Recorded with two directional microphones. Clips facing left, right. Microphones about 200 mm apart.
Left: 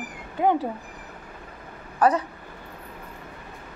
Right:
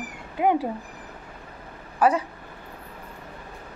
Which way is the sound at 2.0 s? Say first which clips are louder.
Even; 10° right (ahead or behind).